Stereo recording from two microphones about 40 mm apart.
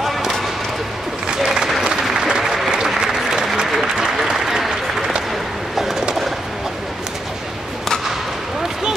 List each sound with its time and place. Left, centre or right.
1.4 s applause: centre
2.4 s applause: centre
3.0 s applause: centre
5.8 s bird: centre